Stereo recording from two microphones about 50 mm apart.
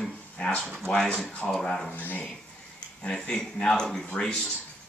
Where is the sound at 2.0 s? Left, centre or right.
Left.